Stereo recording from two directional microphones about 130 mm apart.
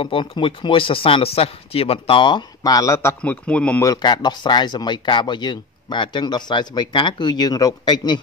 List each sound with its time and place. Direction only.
0.0 s speech: 40° left (ahead or behind); by 3.2 s 25° left (ahead or behind)
3.2 s a man's voice: 10° left (ahead or behind)
3.8 s speech: 30° left (ahead or behind)